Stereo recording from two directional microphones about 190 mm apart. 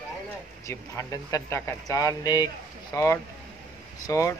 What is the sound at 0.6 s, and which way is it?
Speech, 15° left (ahead or behind).